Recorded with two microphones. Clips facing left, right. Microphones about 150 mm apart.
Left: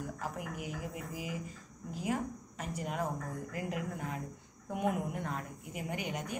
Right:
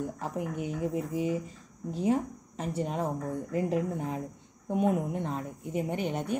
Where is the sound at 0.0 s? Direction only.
30° right (ahead or behind).